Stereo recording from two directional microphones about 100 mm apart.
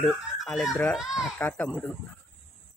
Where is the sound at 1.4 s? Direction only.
15° left (ahead or behind).